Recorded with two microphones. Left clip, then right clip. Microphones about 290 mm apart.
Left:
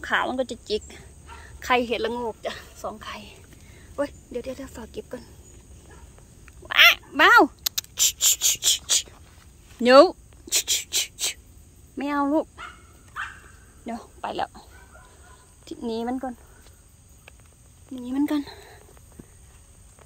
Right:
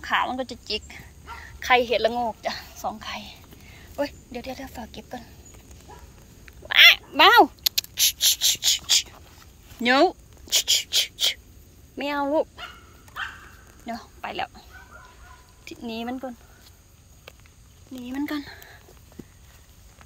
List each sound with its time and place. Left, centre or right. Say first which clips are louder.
0.0 s a woman's voice: even; left
6.4 s a sound: right 2 dB; centre
9.8 s a woman's voice: left 5 dB; left
13.2 s dog: right 1 dB; centre
13.8 s a woman's voice: left 1 dB; left
18.0 s speech: left 5 dB; left